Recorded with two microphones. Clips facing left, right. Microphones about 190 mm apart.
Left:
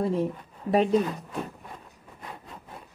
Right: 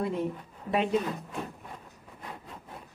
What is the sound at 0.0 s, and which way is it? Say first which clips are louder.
Speech: left 4 dB; 35° left (ahead or behind).